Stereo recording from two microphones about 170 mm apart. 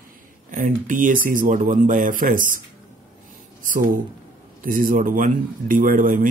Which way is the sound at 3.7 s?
55° right (ahead or behind).